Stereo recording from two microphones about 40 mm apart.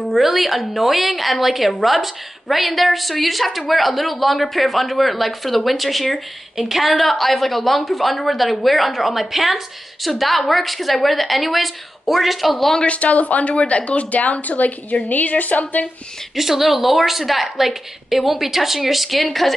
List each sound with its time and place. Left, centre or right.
0.1 s a woman's voice: centre
12.8 s a woman's voice: left
16.3 s a woman's voice: centre